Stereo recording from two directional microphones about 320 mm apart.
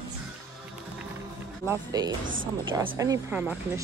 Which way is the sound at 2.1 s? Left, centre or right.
Right.